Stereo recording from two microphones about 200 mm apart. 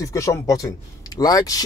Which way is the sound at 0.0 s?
15° left (ahead or behind).